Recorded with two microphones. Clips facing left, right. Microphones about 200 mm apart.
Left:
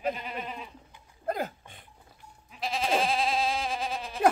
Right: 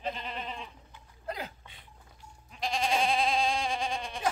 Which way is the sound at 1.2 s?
50° left (ahead or behind).